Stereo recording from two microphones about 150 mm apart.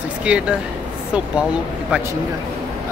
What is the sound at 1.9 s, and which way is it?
Speech, 5° right (ahead or behind).